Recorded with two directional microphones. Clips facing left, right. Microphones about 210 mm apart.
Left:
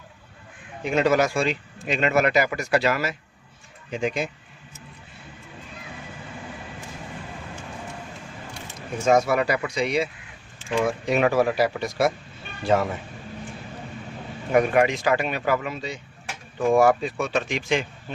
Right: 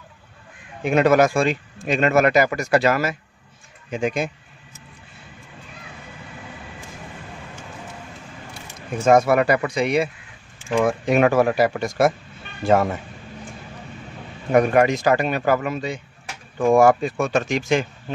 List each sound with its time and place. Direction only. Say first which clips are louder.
0.8 s speech: right 4 dB; 55° right (ahead or behind)
9.0 s speech: right 4 dB; 55° right (ahead or behind)
14.5 s speech: right 3 dB; 45° right (ahead or behind)